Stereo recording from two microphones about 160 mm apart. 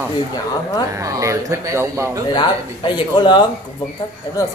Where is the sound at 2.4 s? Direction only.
30° left (ahead or behind).